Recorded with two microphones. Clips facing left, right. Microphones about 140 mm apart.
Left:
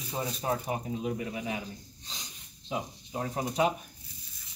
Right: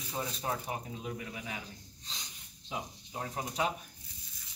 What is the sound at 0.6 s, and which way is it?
Speech, 20° left (ahead or behind).